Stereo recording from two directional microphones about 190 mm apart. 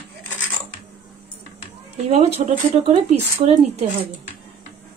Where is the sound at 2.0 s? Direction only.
35° right (ahead or behind).